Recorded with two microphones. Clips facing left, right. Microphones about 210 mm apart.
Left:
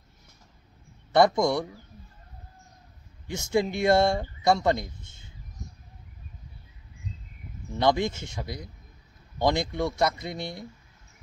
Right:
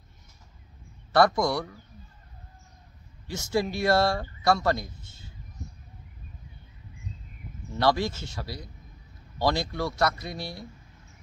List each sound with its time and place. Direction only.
1.1 s speech: 20° left (ahead or behind)
3.3 s speech: 20° left (ahead or behind)
7.8 s speech: 20° left (ahead or behind)